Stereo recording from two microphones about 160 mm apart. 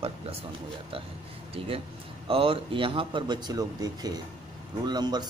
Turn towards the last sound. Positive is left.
turn(degrees=-25)  # may be behind; listen again after turning